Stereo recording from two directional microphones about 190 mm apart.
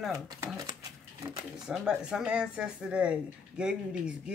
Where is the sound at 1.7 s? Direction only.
5° right (ahead or behind).